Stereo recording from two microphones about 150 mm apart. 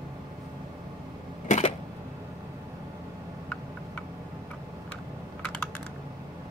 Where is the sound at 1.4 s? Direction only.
45° left (ahead or behind).